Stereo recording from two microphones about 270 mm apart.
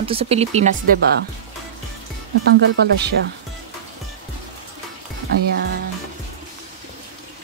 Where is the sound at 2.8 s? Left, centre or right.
Right.